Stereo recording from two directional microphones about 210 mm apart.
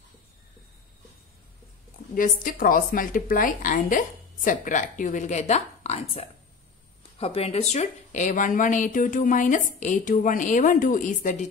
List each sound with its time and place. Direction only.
2.1 s speech: 40° left (ahead or behind)